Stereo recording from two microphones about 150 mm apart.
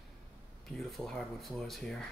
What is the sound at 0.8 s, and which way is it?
Speech, centre (ahead or behind).